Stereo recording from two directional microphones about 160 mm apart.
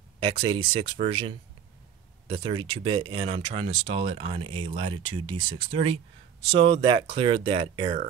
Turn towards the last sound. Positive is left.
turn(degrees=-35)  # may be behind; listen again after turning